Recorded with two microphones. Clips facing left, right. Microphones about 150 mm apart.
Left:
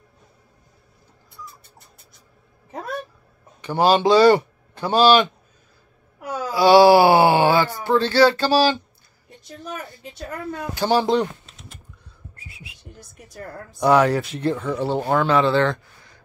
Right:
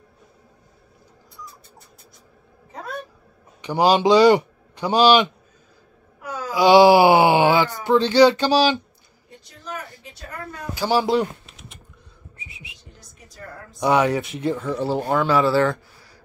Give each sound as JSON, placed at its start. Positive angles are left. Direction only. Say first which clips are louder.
{"t": 3.6, "sound": "a man's voice", "louder": "even", "side_deg": -15}
{"t": 6.5, "sound": "speech", "louder": "even", "side_deg": -15}
{"t": 10.8, "sound": "speech", "louder": "left 1 dB", "side_deg": -10}
{"t": 12.4, "sound": "whistling", "louder": "right 1 dB", "side_deg": 0}
{"t": 13.7, "sound": "speech", "louder": "left 2 dB", "side_deg": 0}